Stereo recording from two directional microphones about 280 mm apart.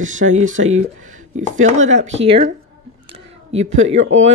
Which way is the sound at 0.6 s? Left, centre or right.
Right.